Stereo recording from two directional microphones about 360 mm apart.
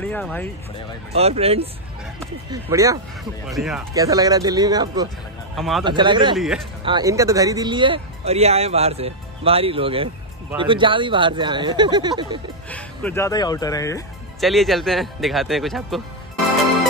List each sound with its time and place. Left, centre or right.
0.0 s speech: centre
1.1 s speech: centre
5.6 s speech: centre
5.9 s speech: centre
6.3 s speech: centre
6.8 s speech: centre
12.6 s speech: centre